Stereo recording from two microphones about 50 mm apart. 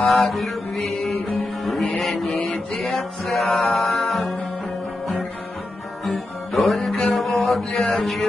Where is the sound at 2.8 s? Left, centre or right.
Centre.